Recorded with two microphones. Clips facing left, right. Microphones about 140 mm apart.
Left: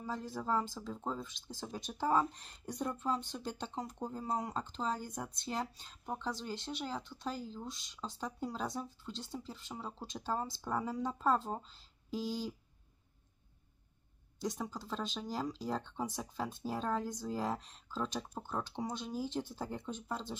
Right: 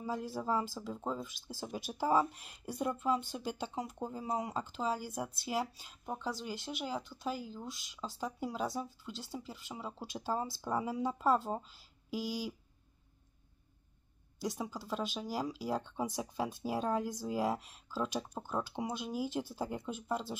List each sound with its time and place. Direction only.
0.0 s speech: 10° right (ahead or behind)
14.4 s speech: 5° right (ahead or behind)